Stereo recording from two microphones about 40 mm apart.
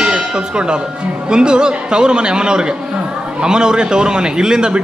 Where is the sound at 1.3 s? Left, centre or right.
Right.